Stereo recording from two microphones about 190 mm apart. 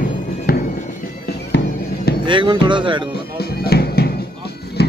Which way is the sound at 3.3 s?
55° left (ahead or behind).